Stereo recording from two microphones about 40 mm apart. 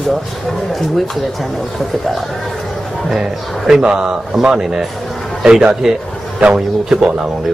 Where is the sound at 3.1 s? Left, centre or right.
Centre.